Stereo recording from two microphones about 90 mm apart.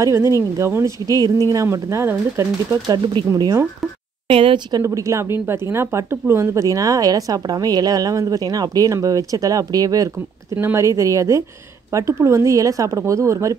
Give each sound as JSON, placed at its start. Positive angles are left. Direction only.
{"t": 0.0, "sound": "speech", "side_deg": -30}
{"t": 4.3, "sound": "a woman's voice", "side_deg": -85}
{"t": 4.8, "sound": "speech", "side_deg": -35}
{"t": 10.5, "sound": "speech", "side_deg": -25}